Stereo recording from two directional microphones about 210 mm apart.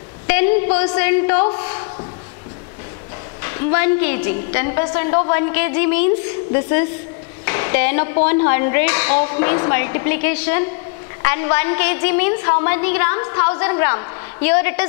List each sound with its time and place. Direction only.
0.9 s a woman's voice: 15° left (ahead or behind)
1.4 s a woman's voice: 25° left (ahead or behind)
3.4 s a woman's voice: 15° left (ahead or behind)